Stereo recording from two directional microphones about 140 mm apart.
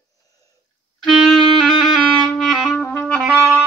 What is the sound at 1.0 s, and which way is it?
Music, centre (ahead or behind).